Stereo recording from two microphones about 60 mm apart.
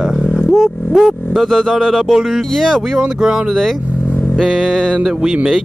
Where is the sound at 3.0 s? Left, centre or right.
Centre.